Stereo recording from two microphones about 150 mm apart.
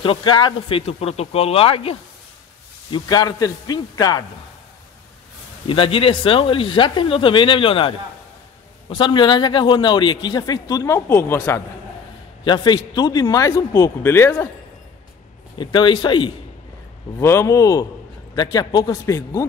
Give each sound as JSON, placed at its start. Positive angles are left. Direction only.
{"t": 0.0, "sound": "speech", "side_deg": 35}
{"t": 2.9, "sound": "a man's voice", "side_deg": 25}
{"t": 5.7, "sound": "a man's voice", "side_deg": 35}
{"t": 12.4, "sound": "a man's voice", "side_deg": 30}
{"t": 15.5, "sound": "speech", "side_deg": 30}
{"t": 17.2, "sound": "a man's voice", "side_deg": 15}